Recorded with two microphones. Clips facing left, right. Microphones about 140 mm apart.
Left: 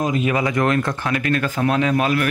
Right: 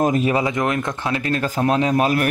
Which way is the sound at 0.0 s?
40° right (ahead or behind).